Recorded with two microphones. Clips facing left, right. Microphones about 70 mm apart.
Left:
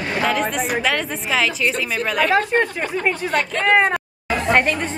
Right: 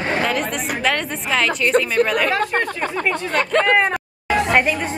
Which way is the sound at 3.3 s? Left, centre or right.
Right.